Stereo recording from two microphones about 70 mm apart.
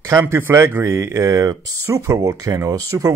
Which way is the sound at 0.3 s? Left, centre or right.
Right.